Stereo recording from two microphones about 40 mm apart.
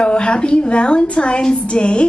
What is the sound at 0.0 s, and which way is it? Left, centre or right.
A woman's voice, left.